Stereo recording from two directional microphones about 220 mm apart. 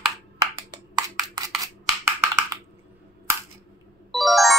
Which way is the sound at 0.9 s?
15° right (ahead or behind).